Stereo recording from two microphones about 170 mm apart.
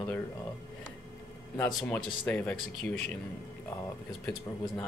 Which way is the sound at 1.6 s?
10° left (ahead or behind).